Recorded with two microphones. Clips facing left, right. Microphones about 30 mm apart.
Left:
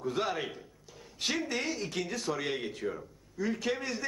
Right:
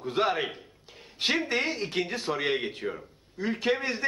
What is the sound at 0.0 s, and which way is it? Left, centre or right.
A man's voice, right.